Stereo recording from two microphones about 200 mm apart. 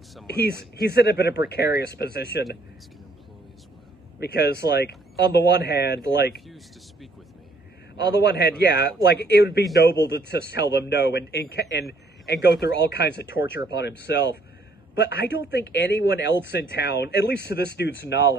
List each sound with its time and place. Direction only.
0.3 s speech: 55° left (ahead or behind)
4.2 s speech: 55° left (ahead or behind)
6.4 s speech: centre (ahead or behind)
7.9 s speech: 55° left (ahead or behind)
13.4 s speech: 10° right (ahead or behind)
13.7 s speech: 55° left (ahead or behind)